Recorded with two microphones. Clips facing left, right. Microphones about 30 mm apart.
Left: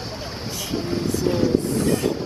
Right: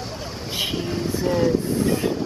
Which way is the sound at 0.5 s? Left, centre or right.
Right.